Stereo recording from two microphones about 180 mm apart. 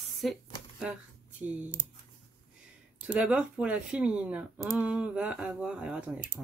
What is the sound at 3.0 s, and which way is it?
Speech, 5° right (ahead or behind).